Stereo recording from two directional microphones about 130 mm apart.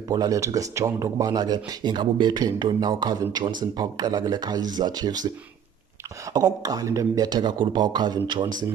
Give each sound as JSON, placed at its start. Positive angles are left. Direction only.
{"t": 0.1, "sound": "speech", "side_deg": -25}
{"t": 6.3, "sound": "speech", "side_deg": -30}